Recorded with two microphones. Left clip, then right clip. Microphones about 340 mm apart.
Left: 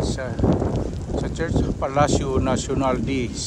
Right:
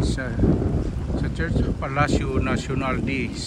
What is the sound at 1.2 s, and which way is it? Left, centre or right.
Speech, centre.